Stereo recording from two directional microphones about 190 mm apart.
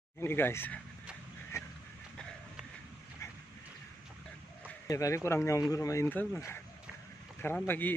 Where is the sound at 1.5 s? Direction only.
15° left (ahead or behind).